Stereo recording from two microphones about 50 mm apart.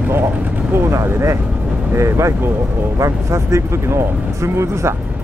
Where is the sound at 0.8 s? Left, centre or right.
Right.